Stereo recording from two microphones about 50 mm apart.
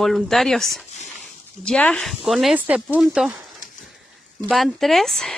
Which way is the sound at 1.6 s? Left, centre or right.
Centre.